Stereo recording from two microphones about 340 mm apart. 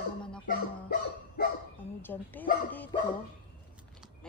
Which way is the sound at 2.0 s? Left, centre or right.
Centre.